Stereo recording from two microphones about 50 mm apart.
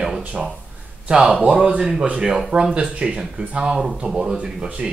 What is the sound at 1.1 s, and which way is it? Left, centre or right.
Speech, centre.